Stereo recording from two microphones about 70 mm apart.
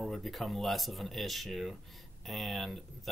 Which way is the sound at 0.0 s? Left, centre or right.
Centre.